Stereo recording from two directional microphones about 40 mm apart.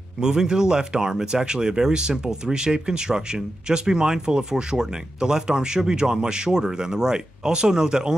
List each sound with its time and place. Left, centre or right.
0.2 s speech: centre